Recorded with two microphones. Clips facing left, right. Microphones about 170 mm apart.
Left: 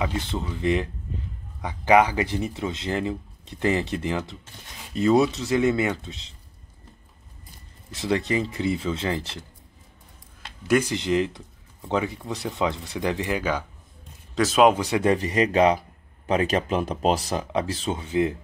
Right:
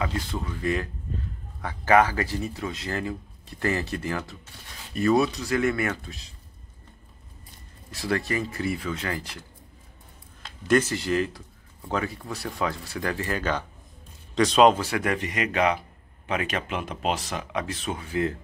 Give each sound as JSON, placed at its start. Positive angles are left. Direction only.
{"t": 0.0, "sound": "speech", "side_deg": 25}
{"t": 7.9, "sound": "speech", "side_deg": 20}
{"t": 10.7, "sound": "speech", "side_deg": 15}
{"t": 14.8, "sound": "speech", "side_deg": 20}
{"t": 15.1, "sound": "speech", "side_deg": 35}